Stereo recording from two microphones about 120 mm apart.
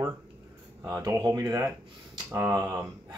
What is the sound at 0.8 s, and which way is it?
Speech, 30° right (ahead or behind).